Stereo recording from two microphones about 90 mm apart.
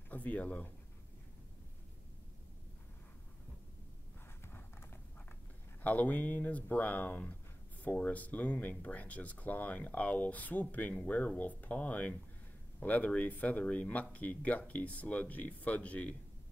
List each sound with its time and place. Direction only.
0.1 s speech: 15° left (ahead or behind)
4.5 s clip-clop: 25° left (ahead or behind)
5.8 s speech: 15° left (ahead or behind)